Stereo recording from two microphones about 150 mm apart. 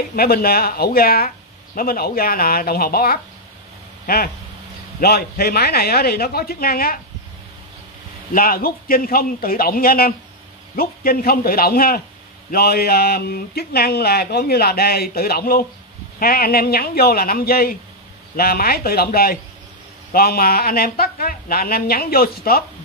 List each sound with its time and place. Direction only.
0.1 s speech: 90° left
8.3 s a man's voice: 75° left (ahead or behind)